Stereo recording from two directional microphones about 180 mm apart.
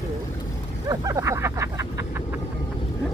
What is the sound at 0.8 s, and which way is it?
Speech, 15° right (ahead or behind).